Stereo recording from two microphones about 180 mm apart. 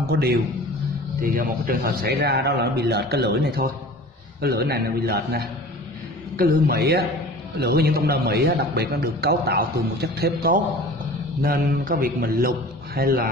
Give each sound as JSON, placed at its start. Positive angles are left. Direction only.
{"t": 0.0, "sound": "a man's voice", "side_deg": -60}